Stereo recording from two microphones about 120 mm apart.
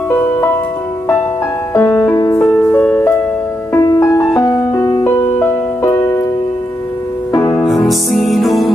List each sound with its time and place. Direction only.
1.7 s music: 20° left (ahead or behind)
3.7 s music: 25° left (ahead or behind)
7.3 s music: 25° left (ahead or behind)
7.6 s music: centre (ahead or behind)